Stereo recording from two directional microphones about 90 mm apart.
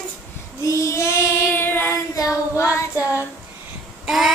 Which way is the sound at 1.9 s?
35° left (ahead or behind).